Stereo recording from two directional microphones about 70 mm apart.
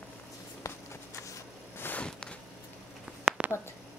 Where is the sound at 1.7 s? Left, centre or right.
Left.